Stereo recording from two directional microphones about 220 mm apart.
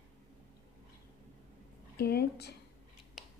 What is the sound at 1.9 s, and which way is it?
Speech, 45° left (ahead or behind).